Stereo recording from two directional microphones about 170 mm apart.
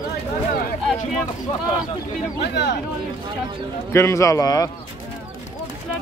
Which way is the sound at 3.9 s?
15° left (ahead or behind).